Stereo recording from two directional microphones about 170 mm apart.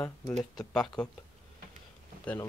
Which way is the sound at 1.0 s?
5° left (ahead or behind).